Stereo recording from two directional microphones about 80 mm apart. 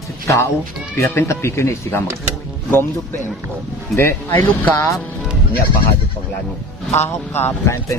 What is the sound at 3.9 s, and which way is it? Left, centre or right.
Speech, left.